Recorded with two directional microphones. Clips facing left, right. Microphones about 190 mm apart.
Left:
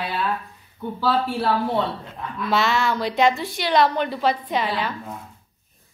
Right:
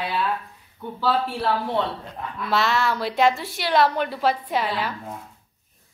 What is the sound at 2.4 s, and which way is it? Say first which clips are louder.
A woman's voice: left 1 dB; centre (ahead or behind).